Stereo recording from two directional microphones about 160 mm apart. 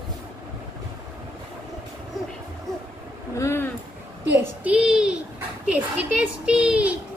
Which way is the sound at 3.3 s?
15° left (ahead or behind).